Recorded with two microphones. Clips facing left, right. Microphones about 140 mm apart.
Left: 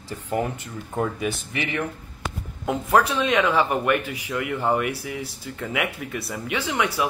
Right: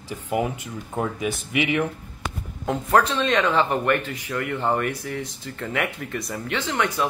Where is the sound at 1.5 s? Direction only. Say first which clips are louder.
Right 5 dB; 15° right (ahead or behind).